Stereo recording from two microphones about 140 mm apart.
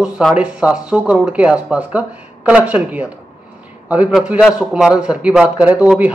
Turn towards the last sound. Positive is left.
turn(degrees=-10)  # may be behind; listen again after turning